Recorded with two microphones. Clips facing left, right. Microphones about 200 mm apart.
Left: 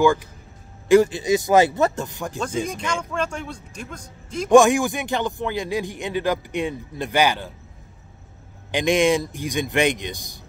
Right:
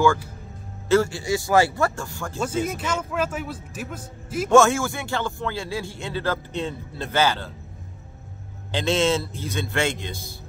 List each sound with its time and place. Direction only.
0.0 s a man's voice: 15° left (ahead or behind)
2.6 s a man's voice: 5° right (ahead or behind)
4.5 s a man's voice: 15° left (ahead or behind)
8.7 s a man's voice: 15° left (ahead or behind)